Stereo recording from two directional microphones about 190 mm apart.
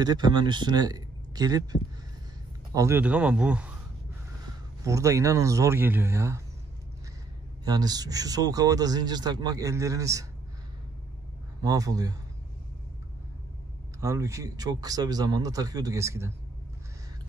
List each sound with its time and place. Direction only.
0.0 s a man's voice: 20° right (ahead or behind); by 3.7 s 5° right (ahead or behind)
4.8 s speech: 15° right (ahead or behind)
7.6 s speech: 20° right (ahead or behind)
11.6 s speech: 20° right (ahead or behind)
13.9 s speech: 15° right (ahead or behind)